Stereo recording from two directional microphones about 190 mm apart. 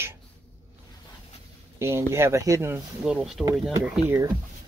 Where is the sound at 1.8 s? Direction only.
15° right (ahead or behind).